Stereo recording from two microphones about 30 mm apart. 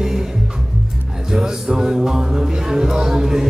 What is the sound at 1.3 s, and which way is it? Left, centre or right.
Music, centre.